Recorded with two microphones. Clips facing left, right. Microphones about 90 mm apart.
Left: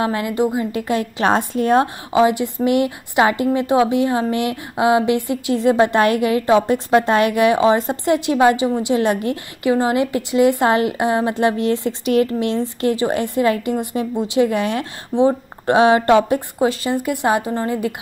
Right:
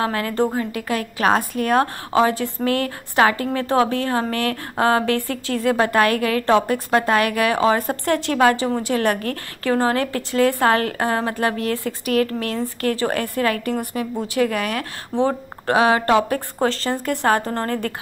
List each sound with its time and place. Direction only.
0.0 s a woman's voice: 20° left (ahead or behind)